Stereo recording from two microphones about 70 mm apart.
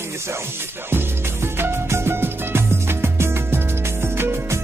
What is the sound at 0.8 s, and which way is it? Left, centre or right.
Music, right.